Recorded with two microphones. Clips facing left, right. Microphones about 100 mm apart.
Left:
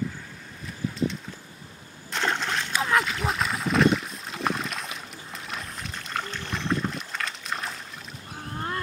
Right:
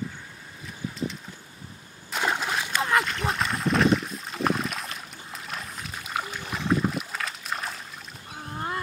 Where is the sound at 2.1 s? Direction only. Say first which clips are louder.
Even; 5° right (ahead or behind).